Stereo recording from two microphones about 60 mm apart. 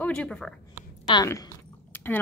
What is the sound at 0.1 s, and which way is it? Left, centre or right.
Speech, centre.